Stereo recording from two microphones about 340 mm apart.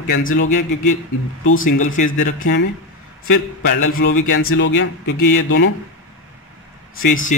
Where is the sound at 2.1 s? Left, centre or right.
Left.